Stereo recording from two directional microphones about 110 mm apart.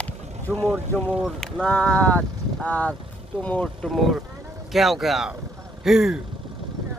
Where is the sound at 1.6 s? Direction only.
15° left (ahead or behind).